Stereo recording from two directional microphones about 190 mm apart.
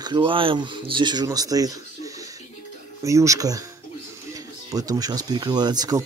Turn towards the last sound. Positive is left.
turn(degrees=-20)  # may be behind; listen again after turning